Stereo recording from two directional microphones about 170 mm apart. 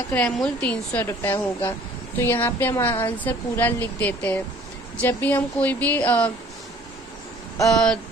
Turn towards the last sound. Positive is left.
turn(degrees=5)  # may be behind; listen again after turning